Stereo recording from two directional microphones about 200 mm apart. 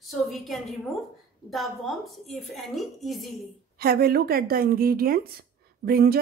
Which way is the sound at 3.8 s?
50° right (ahead or behind).